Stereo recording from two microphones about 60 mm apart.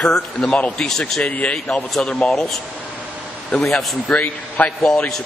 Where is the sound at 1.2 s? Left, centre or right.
Left.